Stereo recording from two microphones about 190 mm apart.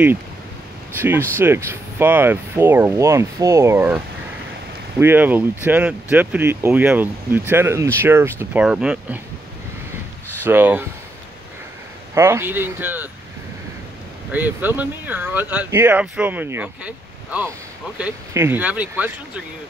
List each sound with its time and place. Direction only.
0.9 s speech: 10° right (ahead or behind)
10.4 s speech: 10° right (ahead or behind)
12.1 s speech: 15° right (ahead or behind)
14.3 s speech: 10° right (ahead or behind)